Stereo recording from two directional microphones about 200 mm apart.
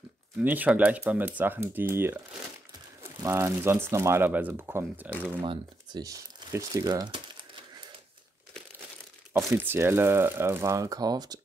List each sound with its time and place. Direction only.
0.4 s speech: 10° right (ahead or behind)
5.4 s speech: 25° right (ahead or behind)
9.5 s speech: 10° right (ahead or behind)